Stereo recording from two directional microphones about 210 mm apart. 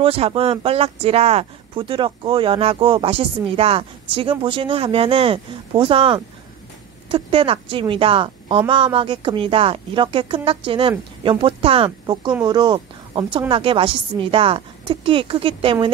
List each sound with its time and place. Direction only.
0.0 s a woman's voice: 25° right (ahead or behind)